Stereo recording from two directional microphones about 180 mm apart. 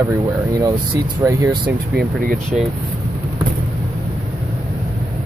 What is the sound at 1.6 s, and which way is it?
Speech, 60° right (ahead or behind).